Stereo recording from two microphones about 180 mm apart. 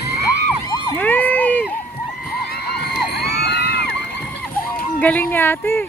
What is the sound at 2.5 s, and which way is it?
Crowd, 60° left (ahead or behind).